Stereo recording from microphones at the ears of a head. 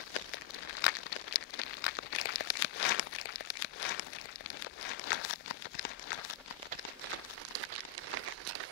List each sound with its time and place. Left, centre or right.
0.7 s crumpling: left
7.5 s crumpling: right